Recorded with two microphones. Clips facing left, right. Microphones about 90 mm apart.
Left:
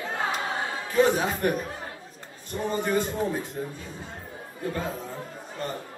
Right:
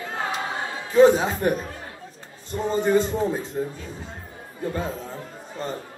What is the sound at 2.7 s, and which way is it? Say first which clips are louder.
Speech: right 6 dB; 25° right (ahead or behind).